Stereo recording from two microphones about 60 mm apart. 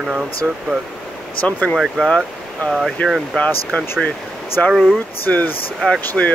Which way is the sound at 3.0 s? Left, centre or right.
Left.